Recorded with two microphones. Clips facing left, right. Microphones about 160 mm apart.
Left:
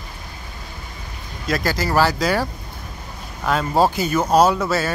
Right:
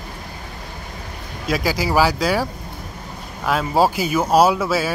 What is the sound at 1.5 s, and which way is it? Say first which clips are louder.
Speech: right 1 dB; 5° right (ahead or behind).